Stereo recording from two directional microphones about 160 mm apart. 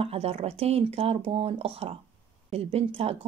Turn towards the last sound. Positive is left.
turn(degrees=-35)  # may be behind; listen again after turning